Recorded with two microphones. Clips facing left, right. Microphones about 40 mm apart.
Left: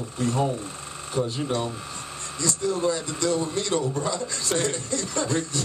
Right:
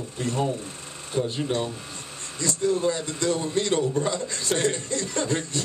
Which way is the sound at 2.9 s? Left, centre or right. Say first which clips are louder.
Even; right.